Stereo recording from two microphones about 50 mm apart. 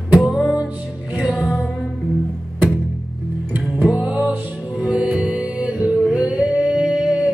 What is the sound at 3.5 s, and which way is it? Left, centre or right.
Music, right.